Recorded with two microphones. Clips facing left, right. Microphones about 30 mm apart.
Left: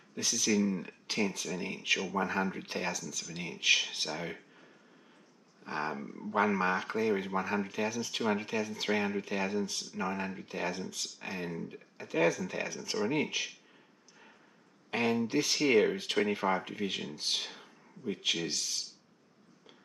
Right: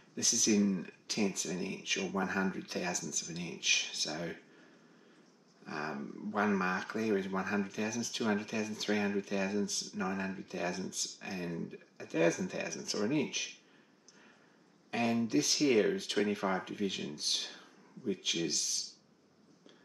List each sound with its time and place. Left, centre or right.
0.1 s speech: left
4.2 s a sound: left
5.6 s dog: centre
6.3 s speech: centre
14.9 s speech: left